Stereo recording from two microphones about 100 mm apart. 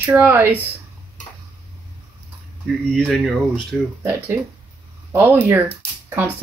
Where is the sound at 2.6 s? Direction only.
Centre (ahead or behind).